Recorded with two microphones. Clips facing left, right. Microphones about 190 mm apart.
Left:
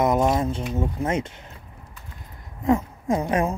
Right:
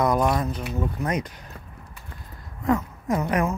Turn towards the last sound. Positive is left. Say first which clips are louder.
# left 1 dB
turn(degrees=25)  # may be behind; listen again after turning